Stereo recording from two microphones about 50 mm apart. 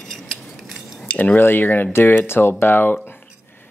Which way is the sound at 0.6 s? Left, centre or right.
Centre.